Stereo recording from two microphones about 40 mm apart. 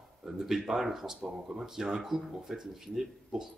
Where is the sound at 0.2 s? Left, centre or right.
Centre.